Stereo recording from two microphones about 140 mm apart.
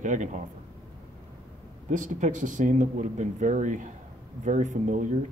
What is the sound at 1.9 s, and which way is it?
Speech, 65° right (ahead or behind).